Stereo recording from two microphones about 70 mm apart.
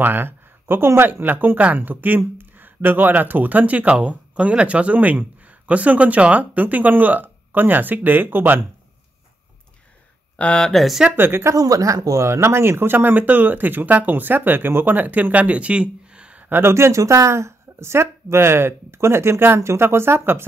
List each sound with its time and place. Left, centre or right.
0.0 s speech: right
10.3 s speech: centre
10.7 s speech: centre
11.1 s speech: right
11.5 s speech: right; by 16.4 s centre
16.4 s speech: right